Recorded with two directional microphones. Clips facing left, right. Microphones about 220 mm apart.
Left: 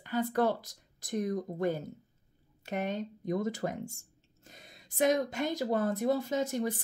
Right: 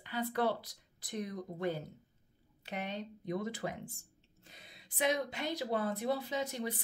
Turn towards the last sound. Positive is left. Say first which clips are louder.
# left 6 dB
turn(degrees=45)  # may be behind; listen again after turning